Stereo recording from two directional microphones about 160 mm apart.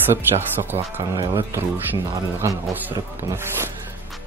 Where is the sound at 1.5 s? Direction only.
15° right (ahead or behind).